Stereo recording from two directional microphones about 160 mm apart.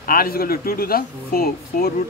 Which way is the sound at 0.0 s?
65° left (ahead or behind).